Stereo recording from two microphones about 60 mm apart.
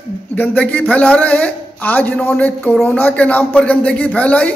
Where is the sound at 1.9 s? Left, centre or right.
Left.